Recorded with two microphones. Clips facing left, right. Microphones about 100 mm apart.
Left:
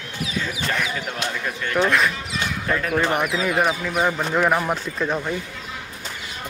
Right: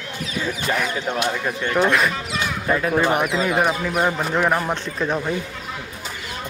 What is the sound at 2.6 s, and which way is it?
Speech, 15° right (ahead or behind).